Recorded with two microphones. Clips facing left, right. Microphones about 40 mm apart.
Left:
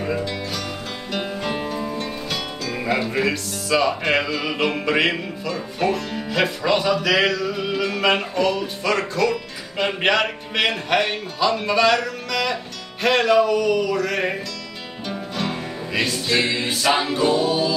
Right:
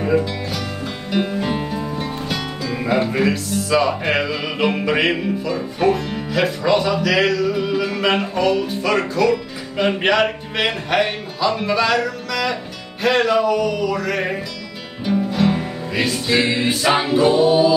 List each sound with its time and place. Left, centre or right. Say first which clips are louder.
0.0 s music: right 6 dB; centre
2.0 s music: right 2 dB; centre